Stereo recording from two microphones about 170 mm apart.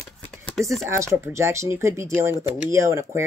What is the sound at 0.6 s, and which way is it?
Speech, 20° right (ahead or behind).